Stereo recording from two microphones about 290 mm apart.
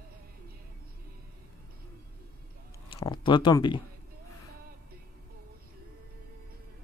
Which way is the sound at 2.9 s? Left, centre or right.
Centre.